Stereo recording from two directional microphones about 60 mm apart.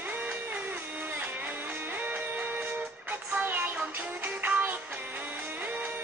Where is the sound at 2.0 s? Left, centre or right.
Right.